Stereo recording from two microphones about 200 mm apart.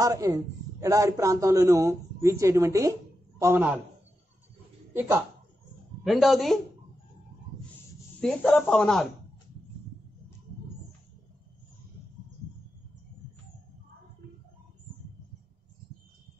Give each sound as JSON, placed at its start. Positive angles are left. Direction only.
{"t": 0.0, "sound": "a man's voice", "side_deg": -15}
{"t": 4.9, "sound": "speech", "side_deg": -15}
{"t": 6.0, "sound": "a man's voice", "side_deg": 0}
{"t": 8.2, "sound": "a man's voice", "side_deg": 5}